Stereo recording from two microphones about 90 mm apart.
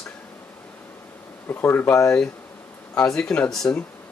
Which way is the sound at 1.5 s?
25° left (ahead or behind).